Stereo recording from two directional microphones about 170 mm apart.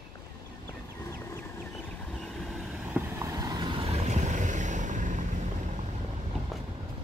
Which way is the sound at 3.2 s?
20° right (ahead or behind).